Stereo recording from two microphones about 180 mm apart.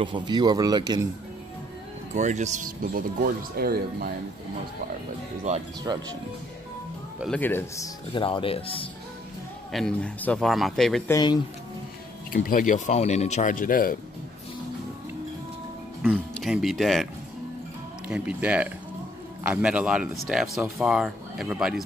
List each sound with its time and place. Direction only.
0.0 s speech: 25° right (ahead or behind)
2.1 s speech: 40° right (ahead or behind); by 4.1 s 55° right (ahead or behind)
5.5 s speech: 40° right (ahead or behind)
5.9 s speech: 20° right (ahead or behind)
7.2 s speech: 10° left (ahead or behind)
8.1 s speech: 30° left (ahead or behind)
9.7 s speech: centre (ahead or behind)
11.1 s speech: 20° left (ahead or behind)
12.3 s speech: 50° left (ahead or behind)
16.0 s speech: centre (ahead or behind)